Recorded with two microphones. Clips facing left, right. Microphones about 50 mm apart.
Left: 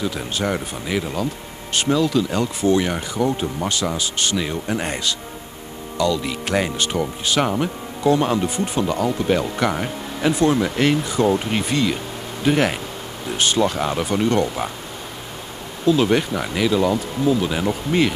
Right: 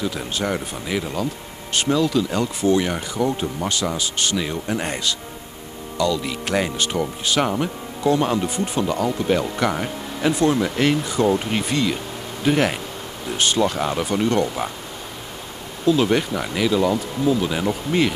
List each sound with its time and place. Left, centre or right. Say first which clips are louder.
0.0 s speech: left 1 dB; centre
15.9 s speech: left 1 dB; centre